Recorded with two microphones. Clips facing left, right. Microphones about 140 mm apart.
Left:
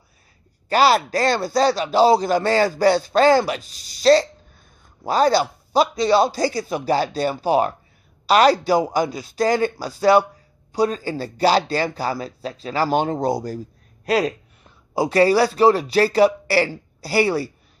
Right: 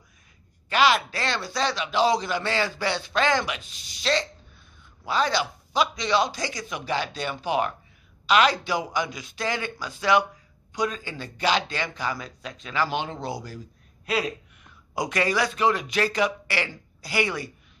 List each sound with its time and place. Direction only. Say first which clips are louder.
0.7 s a man's voice: left 5 dB; 40° left (ahead or behind)